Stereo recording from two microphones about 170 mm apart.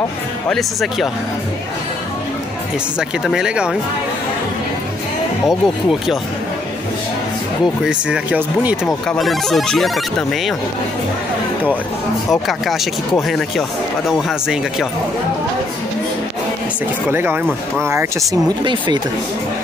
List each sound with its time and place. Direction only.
0.5 s speech: centre (ahead or behind)
3.0 s speech: 5° right (ahead or behind)
5.5 s speech: centre (ahead or behind)
7.8 s speech: 10° right (ahead or behind)
9.0 s speech: centre (ahead or behind)
12.3 s speech: centre (ahead or behind)
17.1 s speech: 15° right (ahead or behind)
18.6 s speech: 25° right (ahead or behind)